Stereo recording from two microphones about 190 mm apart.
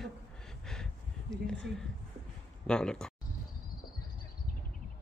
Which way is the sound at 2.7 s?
5° left (ahead or behind).